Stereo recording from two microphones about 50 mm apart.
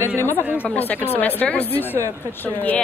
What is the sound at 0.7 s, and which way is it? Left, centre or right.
Speech, left.